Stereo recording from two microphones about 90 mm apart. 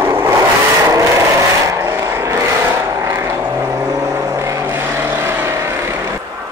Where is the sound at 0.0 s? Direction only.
25° right (ahead or behind).